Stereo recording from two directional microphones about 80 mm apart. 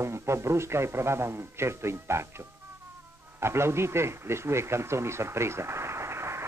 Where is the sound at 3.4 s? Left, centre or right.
Right.